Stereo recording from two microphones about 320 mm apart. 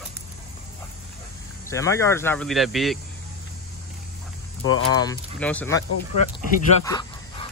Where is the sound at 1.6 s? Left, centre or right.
Centre.